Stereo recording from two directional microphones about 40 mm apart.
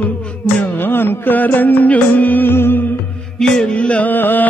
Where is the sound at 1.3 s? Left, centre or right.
Left.